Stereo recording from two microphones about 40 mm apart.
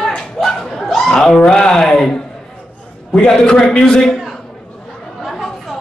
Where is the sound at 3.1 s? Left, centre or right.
Centre.